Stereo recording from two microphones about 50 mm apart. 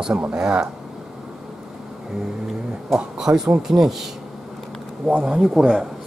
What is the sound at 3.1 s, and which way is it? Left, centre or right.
Speech, centre.